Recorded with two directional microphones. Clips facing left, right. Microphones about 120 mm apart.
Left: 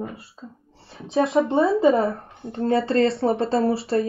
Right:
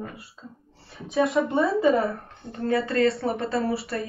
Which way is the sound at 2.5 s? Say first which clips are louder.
Left 4 dB; 30° left (ahead or behind).